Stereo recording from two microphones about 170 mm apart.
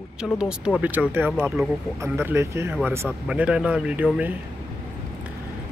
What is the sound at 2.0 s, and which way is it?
Speech, 15° right (ahead or behind).